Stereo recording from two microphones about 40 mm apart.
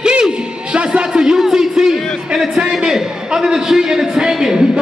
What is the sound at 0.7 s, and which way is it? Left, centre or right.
Music, right.